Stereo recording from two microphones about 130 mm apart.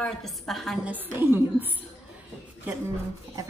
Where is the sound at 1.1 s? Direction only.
15° right (ahead or behind).